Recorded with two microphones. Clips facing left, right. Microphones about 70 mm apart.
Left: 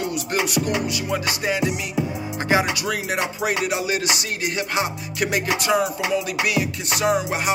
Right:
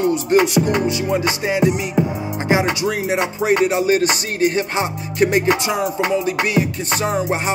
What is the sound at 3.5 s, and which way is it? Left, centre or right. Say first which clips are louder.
Music: right 8 dB; right.